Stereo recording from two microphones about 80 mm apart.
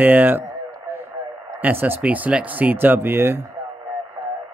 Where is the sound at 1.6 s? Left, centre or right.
Right.